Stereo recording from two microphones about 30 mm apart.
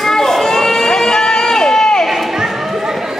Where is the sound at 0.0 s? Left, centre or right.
Centre.